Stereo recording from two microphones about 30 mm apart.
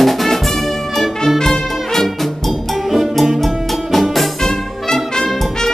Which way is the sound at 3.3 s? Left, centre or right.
Centre.